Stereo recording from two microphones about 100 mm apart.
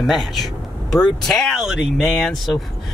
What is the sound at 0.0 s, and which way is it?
Speech, centre (ahead or behind).